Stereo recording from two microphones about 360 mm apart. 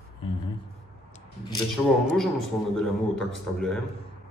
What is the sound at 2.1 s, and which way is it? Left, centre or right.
A man's voice, centre.